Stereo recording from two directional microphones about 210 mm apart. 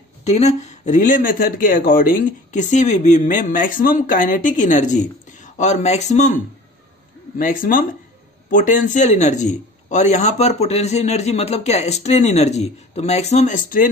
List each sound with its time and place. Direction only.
0.2 s speech: 30° left (ahead or behind)